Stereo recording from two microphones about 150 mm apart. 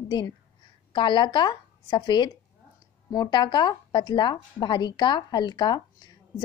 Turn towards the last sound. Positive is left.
turn(degrees=30)  # may be behind; listen again after turning